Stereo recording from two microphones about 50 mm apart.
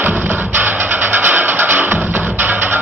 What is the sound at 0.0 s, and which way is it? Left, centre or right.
Music, right.